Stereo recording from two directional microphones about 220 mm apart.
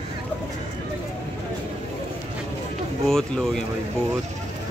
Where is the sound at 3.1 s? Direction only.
Centre (ahead or behind).